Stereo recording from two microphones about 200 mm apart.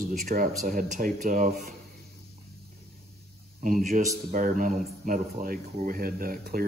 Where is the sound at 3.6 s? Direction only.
40° right (ahead or behind).